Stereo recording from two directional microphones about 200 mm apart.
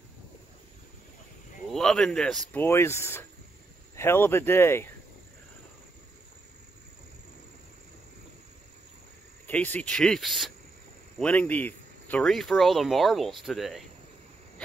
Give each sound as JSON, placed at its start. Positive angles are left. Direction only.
{"t": 1.7, "sound": "speech", "side_deg": 0}
{"t": 9.5, "sound": "speech", "side_deg": 5}